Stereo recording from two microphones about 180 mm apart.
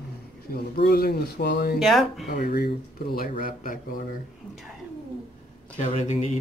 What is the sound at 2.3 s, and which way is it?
Speech, 55° left (ahead or behind).